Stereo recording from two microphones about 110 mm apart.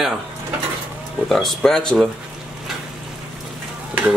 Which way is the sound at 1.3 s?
5° left (ahead or behind).